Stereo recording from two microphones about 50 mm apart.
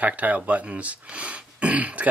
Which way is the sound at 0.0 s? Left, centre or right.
Right.